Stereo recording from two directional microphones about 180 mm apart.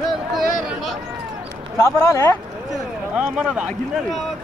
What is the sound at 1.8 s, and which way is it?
Speech, 15° left (ahead or behind).